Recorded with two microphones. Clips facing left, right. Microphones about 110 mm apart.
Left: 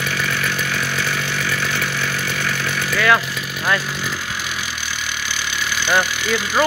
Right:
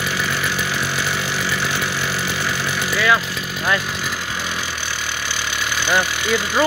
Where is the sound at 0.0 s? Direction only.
15° right (ahead or behind).